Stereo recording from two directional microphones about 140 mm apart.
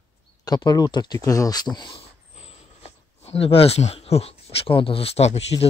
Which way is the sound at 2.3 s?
50° left (ahead or behind).